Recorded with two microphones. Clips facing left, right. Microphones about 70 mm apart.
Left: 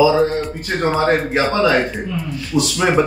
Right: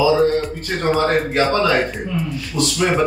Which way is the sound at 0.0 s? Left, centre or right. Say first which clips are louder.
Left 1 dB; left.